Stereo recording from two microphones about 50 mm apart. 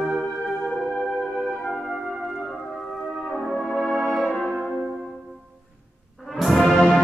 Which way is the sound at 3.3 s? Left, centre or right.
Centre.